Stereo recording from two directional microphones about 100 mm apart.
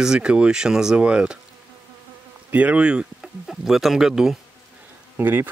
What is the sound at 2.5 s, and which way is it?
Speech, 15° right (ahead or behind).